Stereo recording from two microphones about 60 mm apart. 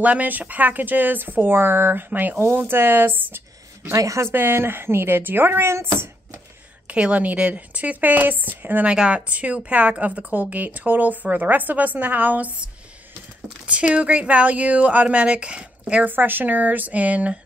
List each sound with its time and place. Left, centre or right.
0.0 s a woman's voice: right
3.9 s speech: right
4.3 s speech: right
6.9 s a woman's voice: right
8.9 s a woman's voice: centre
13.7 s a woman's voice: centre
16.1 s a woman's voice: right